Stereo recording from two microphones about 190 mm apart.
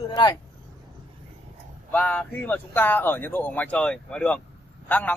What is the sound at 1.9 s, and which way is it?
A man's voice, 5° left (ahead or behind).